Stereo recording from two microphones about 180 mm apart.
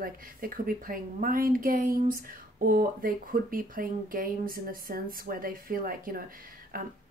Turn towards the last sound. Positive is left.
turn(degrees=-55)  # may be behind; listen again after turning